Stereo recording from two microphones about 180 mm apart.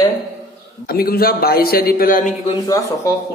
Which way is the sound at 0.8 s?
55° left (ahead or behind).